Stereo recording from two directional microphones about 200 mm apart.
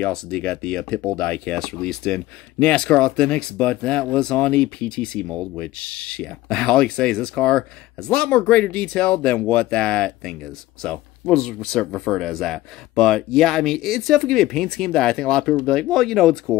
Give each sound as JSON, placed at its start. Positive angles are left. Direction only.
{"t": 0.0, "sound": "speech", "side_deg": 5}